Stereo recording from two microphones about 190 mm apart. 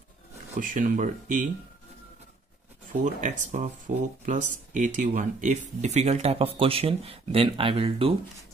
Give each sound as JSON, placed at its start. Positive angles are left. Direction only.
{"t": 0.6, "sound": "speech", "side_deg": -45}
{"t": 2.9, "sound": "speech", "side_deg": -40}